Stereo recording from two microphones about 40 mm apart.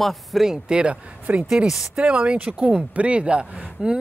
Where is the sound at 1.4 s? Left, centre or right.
Centre.